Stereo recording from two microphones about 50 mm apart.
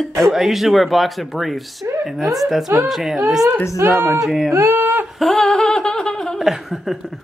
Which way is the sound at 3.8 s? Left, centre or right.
Right.